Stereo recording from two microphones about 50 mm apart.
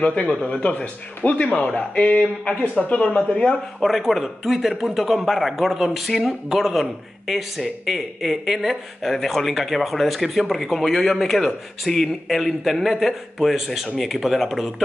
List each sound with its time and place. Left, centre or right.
0.5 s speech: left
3.8 s a man's voice: centre